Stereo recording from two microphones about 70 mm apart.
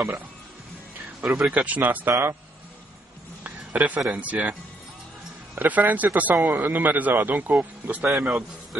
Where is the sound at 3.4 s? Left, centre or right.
Right.